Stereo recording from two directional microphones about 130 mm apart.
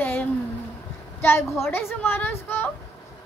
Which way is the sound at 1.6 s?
20° left (ahead or behind).